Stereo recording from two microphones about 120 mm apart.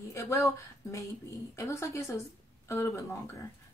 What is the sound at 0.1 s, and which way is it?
Speech, 25° left (ahead or behind).